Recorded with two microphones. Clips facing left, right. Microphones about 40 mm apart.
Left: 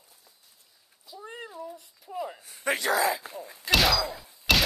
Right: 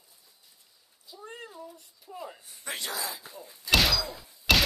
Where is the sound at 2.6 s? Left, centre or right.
Left.